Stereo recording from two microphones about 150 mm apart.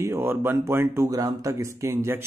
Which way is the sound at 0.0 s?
15° right (ahead or behind).